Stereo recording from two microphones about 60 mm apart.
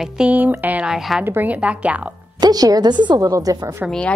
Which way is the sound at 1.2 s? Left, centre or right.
Right.